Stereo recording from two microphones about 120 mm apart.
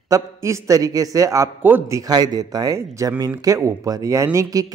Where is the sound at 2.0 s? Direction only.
30° right (ahead or behind).